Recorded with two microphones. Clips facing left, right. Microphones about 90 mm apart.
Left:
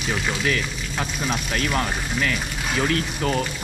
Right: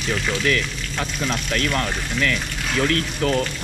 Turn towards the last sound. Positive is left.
turn(degrees=20)  # may be behind; listen again after turning